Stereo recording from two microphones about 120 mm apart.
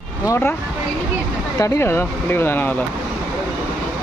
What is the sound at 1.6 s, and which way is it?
Speech, 20° left (ahead or behind).